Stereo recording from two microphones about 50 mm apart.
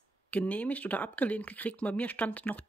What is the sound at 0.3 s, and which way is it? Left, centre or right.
Speech, left.